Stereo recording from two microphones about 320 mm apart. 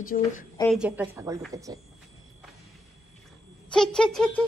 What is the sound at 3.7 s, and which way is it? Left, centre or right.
Speech, centre.